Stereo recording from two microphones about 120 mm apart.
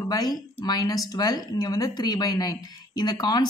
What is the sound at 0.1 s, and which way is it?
Speech, 35° left (ahead or behind).